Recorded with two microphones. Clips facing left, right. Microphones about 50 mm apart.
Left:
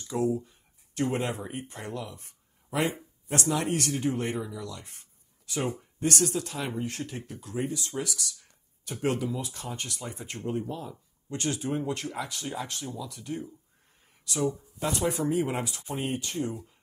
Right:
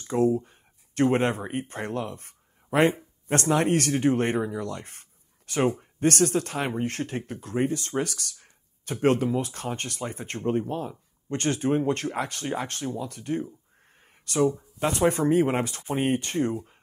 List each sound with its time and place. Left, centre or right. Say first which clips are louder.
0.0 s speech: right 5 dB; right
14.0 s a sound: right 6 dB; right
14.8 s speech: right 6 dB; right